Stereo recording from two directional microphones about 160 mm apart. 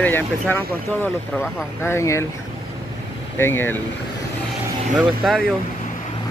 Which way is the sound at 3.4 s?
15° left (ahead or behind).